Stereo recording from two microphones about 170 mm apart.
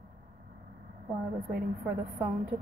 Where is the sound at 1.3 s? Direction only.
60° right (ahead or behind).